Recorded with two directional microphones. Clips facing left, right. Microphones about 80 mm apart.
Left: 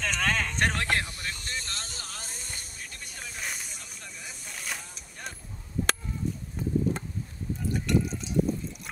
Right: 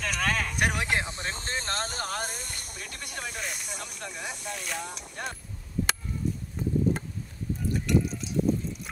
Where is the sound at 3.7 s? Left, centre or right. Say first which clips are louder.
Right 7 dB; right.